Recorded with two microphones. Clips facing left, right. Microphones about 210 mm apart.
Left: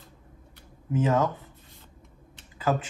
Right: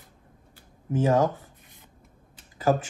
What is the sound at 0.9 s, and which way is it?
Speech, 30° right (ahead or behind).